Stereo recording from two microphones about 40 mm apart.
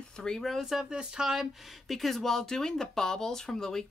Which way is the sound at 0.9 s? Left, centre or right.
Centre.